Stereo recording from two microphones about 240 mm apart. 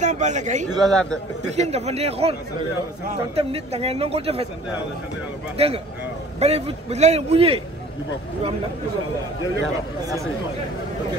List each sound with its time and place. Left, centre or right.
0.0 s a man's voice: right
0.8 s a man's voice: centre
1.4 s a man's voice: right
5.6 s a man's voice: right
10.0 s speech: centre